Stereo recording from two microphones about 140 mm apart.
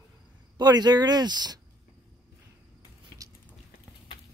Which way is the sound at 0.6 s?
30° right (ahead or behind).